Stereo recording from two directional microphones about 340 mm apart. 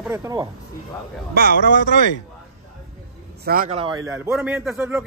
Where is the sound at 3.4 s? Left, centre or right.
Right; by 5.0 s centre.